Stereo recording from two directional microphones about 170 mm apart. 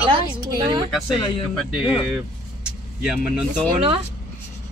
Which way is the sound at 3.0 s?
5° right (ahead or behind).